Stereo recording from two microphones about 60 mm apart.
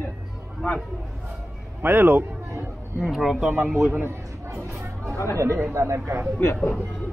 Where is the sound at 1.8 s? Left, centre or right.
Right.